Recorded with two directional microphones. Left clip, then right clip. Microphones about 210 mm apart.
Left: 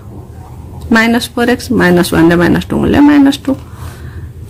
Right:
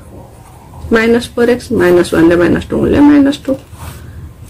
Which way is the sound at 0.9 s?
40° left (ahead or behind).